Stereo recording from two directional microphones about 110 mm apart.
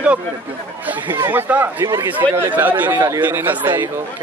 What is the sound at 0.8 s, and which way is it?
Speech, 15° right (ahead or behind).